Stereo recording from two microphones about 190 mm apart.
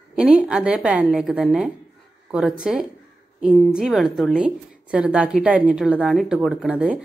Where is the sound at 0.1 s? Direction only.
5° right (ahead or behind).